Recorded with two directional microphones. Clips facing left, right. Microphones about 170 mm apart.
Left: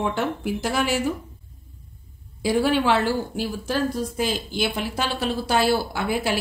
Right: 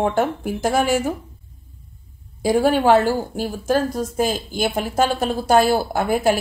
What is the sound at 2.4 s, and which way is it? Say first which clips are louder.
Speech: right 4 dB; 45° right (ahead or behind).